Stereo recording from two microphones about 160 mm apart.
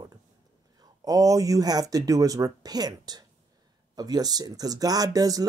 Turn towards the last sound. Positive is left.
turn(degrees=-20)  # may be behind; listen again after turning